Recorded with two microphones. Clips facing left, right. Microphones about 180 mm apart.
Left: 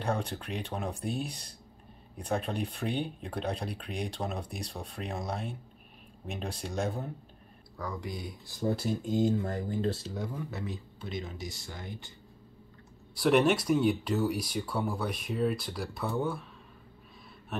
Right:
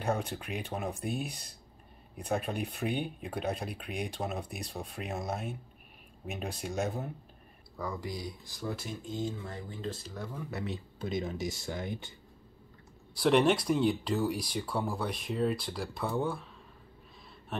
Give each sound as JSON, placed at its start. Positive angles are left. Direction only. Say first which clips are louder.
{"t": 0.0, "sound": "speech", "louder": "even", "side_deg": -5}
{"t": 8.6, "sound": "speech", "louder": "left 7 dB", "side_deg": 35}
{"t": 10.1, "sound": "speech", "louder": "left 4 dB", "side_deg": 15}
{"t": 11.0, "sound": "speech", "louder": "right 7 dB", "side_deg": -45}
{"t": 13.2, "sound": "speech", "louder": "left 1 dB", "side_deg": 5}